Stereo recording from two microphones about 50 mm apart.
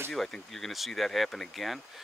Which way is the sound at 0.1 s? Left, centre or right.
Centre.